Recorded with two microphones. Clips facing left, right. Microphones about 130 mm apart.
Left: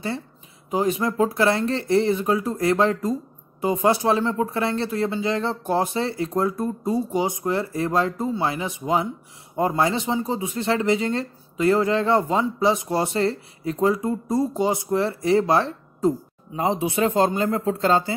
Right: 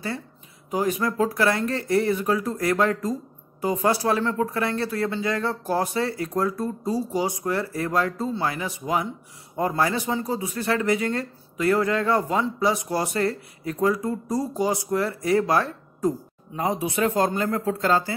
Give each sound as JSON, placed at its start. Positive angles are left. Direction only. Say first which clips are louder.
{"t": 0.7, "sound": "speech", "louder": "left 2 dB", "side_deg": 25}